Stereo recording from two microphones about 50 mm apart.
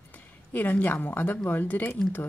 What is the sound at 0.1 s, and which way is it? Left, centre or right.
A woman's voice, left.